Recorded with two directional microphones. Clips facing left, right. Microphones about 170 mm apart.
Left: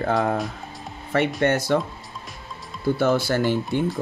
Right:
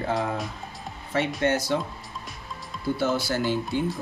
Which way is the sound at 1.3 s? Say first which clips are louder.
Left 3 dB; 55° left (ahead or behind).